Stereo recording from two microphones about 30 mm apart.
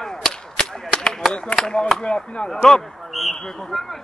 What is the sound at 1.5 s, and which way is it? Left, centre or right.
Speech, left.